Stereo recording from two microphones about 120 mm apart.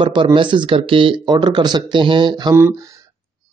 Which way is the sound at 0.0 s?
45° right (ahead or behind).